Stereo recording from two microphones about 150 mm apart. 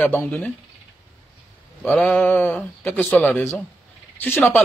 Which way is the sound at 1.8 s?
10° left (ahead or behind).